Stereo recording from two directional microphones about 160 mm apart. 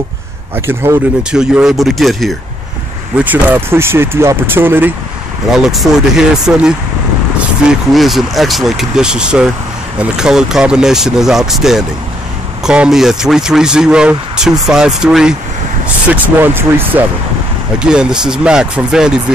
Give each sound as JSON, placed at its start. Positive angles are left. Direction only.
{"t": 0.6, "sound": "speech", "side_deg": -15}
{"t": 1.3, "sound": "speech", "side_deg": -5}
{"t": 3.2, "sound": "speech", "side_deg": -10}
{"t": 5.5, "sound": "speech", "side_deg": 0}